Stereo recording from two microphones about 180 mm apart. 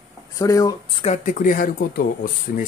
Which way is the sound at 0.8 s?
35° left (ahead or behind).